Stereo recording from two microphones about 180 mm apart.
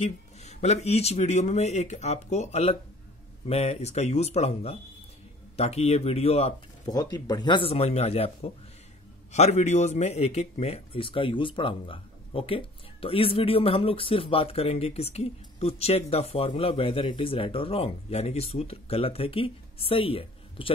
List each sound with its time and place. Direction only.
0.0 s speech: 40° left (ahead or behind)
6.8 s speech: 20° left (ahead or behind)